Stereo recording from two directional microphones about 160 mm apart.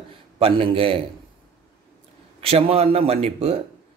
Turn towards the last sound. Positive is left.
turn(degrees=-40)  # may be behind; listen again after turning